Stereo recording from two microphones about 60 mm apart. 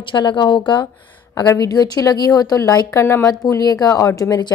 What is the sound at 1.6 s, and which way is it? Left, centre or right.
Speech, left.